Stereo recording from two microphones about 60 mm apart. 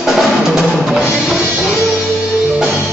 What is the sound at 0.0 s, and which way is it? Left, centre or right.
Music, centre.